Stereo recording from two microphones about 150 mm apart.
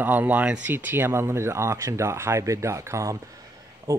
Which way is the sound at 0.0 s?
10° right (ahead or behind).